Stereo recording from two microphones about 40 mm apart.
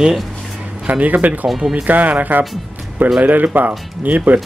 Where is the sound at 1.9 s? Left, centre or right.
Right.